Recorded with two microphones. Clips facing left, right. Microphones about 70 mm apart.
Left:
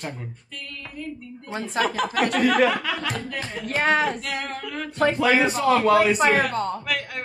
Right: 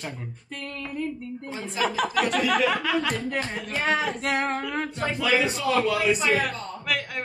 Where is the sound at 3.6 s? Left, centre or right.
Left.